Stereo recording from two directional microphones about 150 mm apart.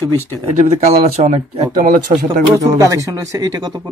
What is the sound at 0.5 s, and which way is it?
Speech, 50° right (ahead or behind).